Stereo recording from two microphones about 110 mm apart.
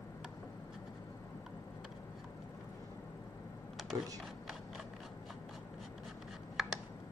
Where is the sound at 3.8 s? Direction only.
Centre (ahead or behind).